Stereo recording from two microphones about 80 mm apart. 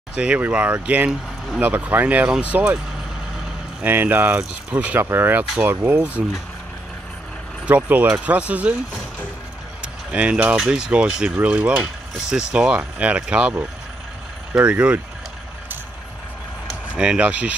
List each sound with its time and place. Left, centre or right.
0.1 s speech: centre
3.8 s speech: right
7.6 s speech: right
10.1 s speech: centre
14.6 s speech: centre
16.9 s speech: centre